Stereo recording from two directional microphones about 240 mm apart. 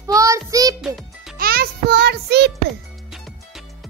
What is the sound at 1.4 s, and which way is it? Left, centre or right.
Music, right.